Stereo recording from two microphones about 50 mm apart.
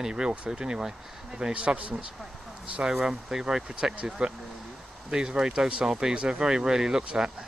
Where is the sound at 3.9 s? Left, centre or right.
Right.